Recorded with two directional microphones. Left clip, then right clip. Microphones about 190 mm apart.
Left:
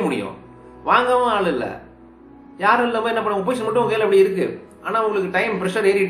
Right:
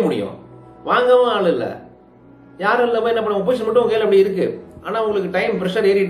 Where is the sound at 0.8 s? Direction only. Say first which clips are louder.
Right 3 dB; 15° left (ahead or behind).